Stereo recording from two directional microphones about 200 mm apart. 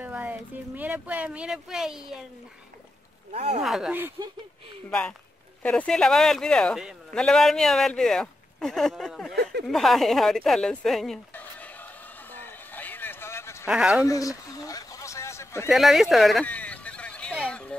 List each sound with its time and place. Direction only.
0.0 s speech: 10° right (ahead or behind)
3.3 s speech: 35° right (ahead or behind)
3.6 s speech: centre (ahead or behind)
5.6 s a man's voice: 5° left (ahead or behind)
9.3 s speech: 55° right (ahead or behind)
9.7 s a sound: centre (ahead or behind)
13.7 s a man's voice: 5° right (ahead or behind)
14.0 s speech: 15° left (ahead or behind)
14.5 s a sound: 15° left (ahead or behind)
15.7 s a sound: centre (ahead or behind)